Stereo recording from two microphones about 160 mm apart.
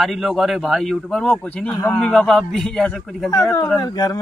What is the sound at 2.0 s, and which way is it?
A man's voice, 5° left (ahead or behind).